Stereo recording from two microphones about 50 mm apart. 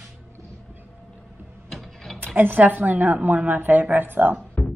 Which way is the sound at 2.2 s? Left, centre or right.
Right.